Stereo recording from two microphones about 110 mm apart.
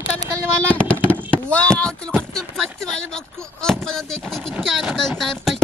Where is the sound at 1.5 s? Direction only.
10° left (ahead or behind).